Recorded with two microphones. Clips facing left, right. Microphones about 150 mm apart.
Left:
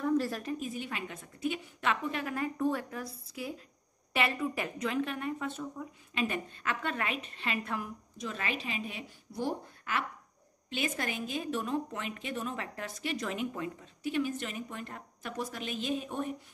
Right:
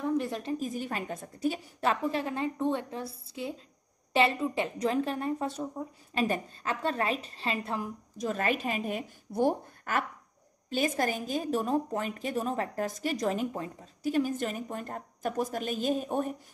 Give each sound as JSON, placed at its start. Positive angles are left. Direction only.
{"t": 0.0, "sound": "a woman's voice", "side_deg": -20}
{"t": 8.2, "sound": "a woman's voice", "side_deg": -45}